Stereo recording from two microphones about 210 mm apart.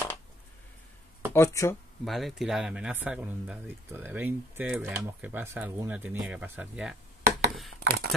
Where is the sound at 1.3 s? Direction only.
15° left (ahead or behind).